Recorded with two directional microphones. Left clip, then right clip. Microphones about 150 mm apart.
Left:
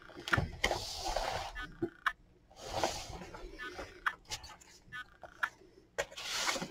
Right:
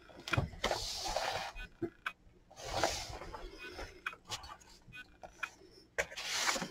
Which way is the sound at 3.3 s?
15° left (ahead or behind).